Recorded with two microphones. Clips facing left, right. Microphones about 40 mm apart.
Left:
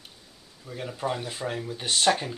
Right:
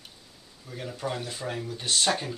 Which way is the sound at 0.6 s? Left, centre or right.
Centre.